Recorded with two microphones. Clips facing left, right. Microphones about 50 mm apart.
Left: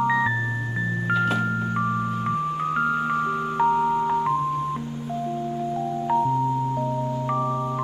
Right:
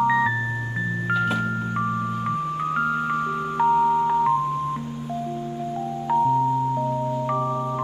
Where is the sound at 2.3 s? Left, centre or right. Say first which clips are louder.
Left 1 dB; centre.